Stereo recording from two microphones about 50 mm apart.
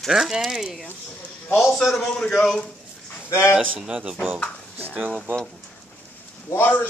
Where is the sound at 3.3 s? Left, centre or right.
Left.